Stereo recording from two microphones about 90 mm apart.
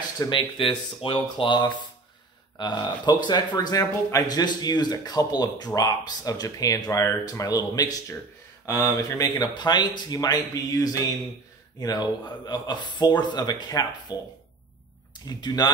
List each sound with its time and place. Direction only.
0.3 s speech: 75° left (ahead or behind); by 9.5 s 40° left (ahead or behind)
9.5 s speech: 55° left (ahead or behind)
15.2 s speech: 50° left (ahead or behind)